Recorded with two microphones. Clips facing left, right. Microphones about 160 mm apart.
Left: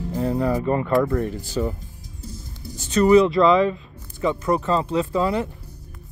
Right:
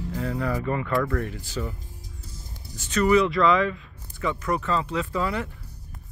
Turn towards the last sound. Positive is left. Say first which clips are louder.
# left 6 dB
turn(degrees=30)  # may be behind; listen again after turning